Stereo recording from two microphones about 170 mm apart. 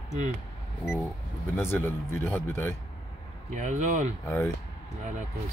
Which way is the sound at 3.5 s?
45° right (ahead or behind).